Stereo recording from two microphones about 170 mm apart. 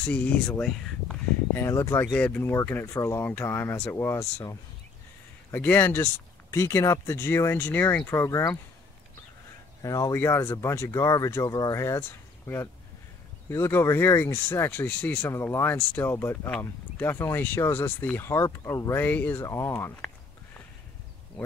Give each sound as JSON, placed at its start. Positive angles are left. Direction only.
{"t": 0.0, "sound": "speech", "side_deg": 10}
{"t": 2.0, "sound": "speech", "side_deg": 5}
{"t": 9.8, "sound": "speech", "side_deg": 20}